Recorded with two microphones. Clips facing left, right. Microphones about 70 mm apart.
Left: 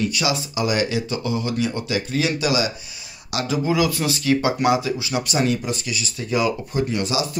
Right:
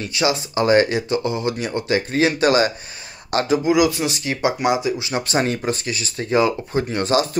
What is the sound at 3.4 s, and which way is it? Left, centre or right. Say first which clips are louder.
Speech: right 3 dB; right.